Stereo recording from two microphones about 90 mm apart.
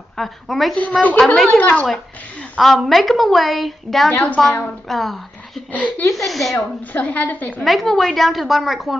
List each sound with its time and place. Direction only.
0.2 s a woman's voice: centre (ahead or behind)
0.7 s a woman's voice: 15° left (ahead or behind)
1.6 s a woman's voice: 15° left (ahead or behind)
2.6 s a woman's voice: centre (ahead or behind)
5.7 s a woman's voice: 15° left (ahead or behind)
6.1 s a woman's voice: centre (ahead or behind)
6.9 s a woman's voice: 15° left (ahead or behind)
7.6 s a woman's voice: centre (ahead or behind)